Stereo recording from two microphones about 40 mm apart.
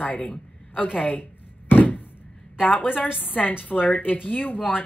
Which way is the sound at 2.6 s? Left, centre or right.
Left.